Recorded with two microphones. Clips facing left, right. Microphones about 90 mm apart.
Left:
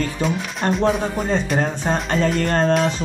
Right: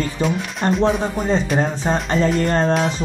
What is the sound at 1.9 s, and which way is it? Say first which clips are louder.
Speech: right 1 dB; 15° right (ahead or behind).